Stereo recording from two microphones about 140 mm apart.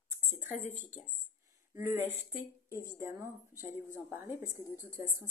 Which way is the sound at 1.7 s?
15° right (ahead or behind).